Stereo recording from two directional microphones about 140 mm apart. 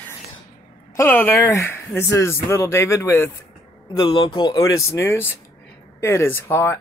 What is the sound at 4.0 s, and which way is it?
Speech, 35° left (ahead or behind).